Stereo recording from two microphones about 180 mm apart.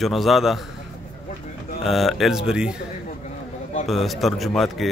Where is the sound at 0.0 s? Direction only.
Centre (ahead or behind).